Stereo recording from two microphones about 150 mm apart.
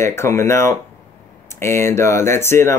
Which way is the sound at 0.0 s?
20° left (ahead or behind).